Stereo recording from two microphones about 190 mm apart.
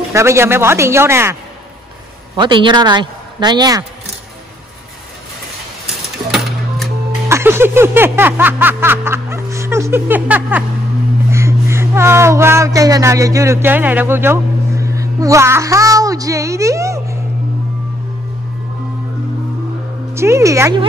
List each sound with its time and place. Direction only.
0.1 s speech: 15° right (ahead or behind)
2.3 s a man's voice: 25° right (ahead or behind)
7.2 s music: 15° right (ahead or behind)
11.2 s speech: 15° right (ahead or behind)
20.2 s speech: 15° right (ahead or behind)